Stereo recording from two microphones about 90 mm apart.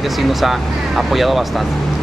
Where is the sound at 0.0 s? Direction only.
Centre (ahead or behind).